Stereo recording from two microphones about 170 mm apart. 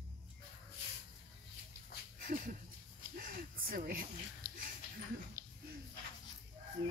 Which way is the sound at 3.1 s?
55° right (ahead or behind).